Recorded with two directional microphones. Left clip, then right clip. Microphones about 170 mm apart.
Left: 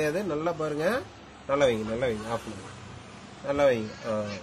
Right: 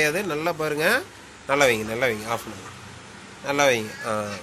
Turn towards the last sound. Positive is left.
turn(degrees=-15)  # may be behind; listen again after turning